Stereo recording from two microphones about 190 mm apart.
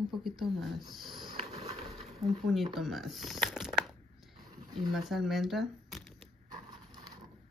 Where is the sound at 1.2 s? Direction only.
30° right (ahead or behind).